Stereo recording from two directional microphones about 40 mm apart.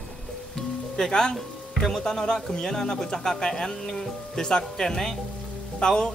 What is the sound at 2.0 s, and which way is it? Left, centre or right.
A woman's voice, centre.